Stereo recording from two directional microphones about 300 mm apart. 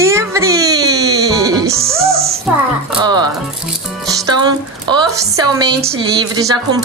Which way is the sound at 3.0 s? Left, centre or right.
Centre.